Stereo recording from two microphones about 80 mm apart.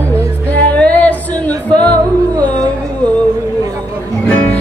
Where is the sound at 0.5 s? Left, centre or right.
Centre.